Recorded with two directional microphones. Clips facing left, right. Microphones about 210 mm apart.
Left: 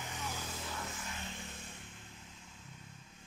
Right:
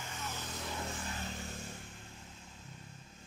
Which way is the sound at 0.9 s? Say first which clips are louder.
Right 4 dB; 35° right (ahead or behind).